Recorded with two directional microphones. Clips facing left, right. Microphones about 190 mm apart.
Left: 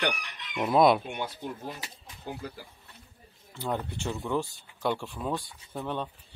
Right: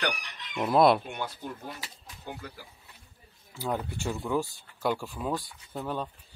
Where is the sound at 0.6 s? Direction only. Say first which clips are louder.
Even; centre (ahead or behind).